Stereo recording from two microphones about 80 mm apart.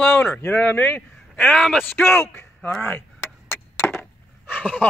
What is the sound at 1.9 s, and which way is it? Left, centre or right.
Speech, left.